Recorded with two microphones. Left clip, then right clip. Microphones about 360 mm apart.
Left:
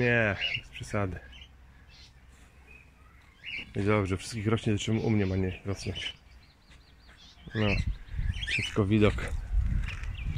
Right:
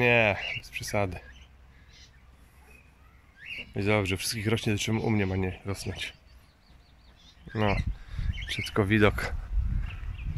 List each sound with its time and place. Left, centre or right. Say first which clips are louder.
0.0 s speech: right 3 dB; centre
3.7 s speech: right 2 dB; centre
7.5 s speech: right 2 dB; right
8.5 s speech: even; right
8.8 s speech: right 5 dB; centre